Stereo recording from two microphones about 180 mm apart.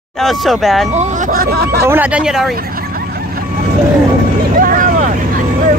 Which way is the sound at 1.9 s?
10° right (ahead or behind).